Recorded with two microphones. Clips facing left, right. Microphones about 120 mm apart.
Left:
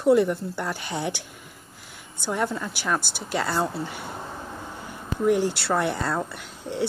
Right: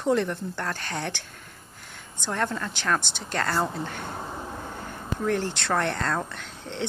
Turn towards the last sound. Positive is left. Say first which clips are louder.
# left 4 dB
turn(degrees=10)  # may be behind; listen again after turning